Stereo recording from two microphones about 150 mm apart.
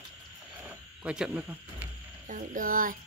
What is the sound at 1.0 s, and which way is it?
Speech, 10° right (ahead or behind).